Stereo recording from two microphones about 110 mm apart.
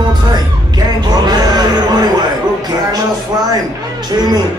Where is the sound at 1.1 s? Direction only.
35° right (ahead or behind).